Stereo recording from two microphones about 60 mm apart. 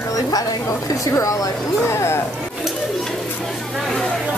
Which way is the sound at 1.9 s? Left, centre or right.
Left.